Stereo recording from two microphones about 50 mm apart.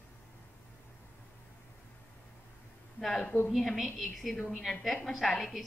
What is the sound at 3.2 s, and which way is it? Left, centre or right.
Speech, left.